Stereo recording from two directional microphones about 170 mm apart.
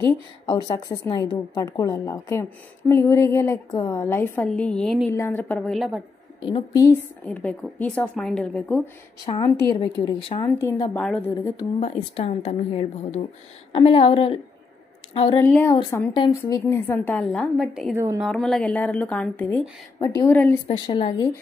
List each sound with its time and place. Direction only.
0.0 s a woman's voice: 25° left (ahead or behind); by 5.1 s centre (ahead or behind)
5.1 s a woman's voice: 15° left (ahead or behind)
6.4 s speech: 25° left (ahead or behind)
7.2 s a woman's voice: 5° left (ahead or behind)
9.2 s a woman's voice: 25° left (ahead or behind)
10.4 s speech: 20° left (ahead or behind)
11.0 s a woman's voice: 10° left (ahead or behind)
11.8 s a woman's voice: 35° left (ahead or behind)
15.3 s a woman's voice: 10° left (ahead or behind)
17.9 s speech: 15° right (ahead or behind)
18.2 s a woman's voice: centre (ahead or behind)
20.6 s a woman's voice: 30° left (ahead or behind)